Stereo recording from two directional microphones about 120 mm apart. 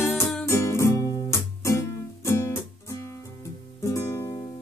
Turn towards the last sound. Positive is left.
turn(degrees=20)  # may be behind; listen again after turning